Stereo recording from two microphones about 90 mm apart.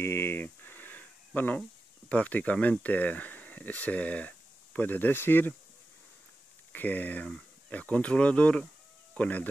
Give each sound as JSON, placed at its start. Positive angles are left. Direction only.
{"t": 0.0, "sound": "a sound", "side_deg": 30}
{"t": 2.0, "sound": "speech", "side_deg": 15}
{"t": 6.7, "sound": "speech", "side_deg": 20}